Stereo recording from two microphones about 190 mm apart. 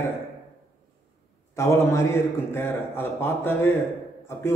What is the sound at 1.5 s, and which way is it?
A man's voice, 15° left (ahead or behind).